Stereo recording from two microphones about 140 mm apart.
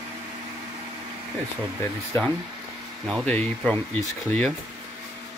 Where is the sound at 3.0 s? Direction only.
Centre (ahead or behind).